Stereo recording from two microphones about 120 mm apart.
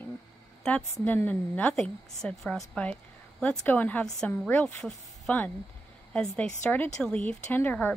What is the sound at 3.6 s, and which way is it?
A woman's voice, 15° left (ahead or behind).